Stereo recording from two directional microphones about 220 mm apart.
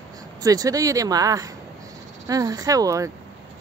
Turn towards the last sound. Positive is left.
turn(degrees=-15)  # may be behind; listen again after turning